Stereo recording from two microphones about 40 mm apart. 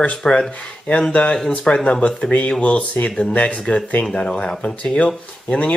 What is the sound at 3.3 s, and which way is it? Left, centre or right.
Speech, left.